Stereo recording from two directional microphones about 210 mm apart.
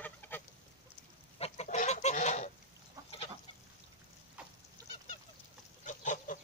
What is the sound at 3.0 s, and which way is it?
Goose, 15° right (ahead or behind).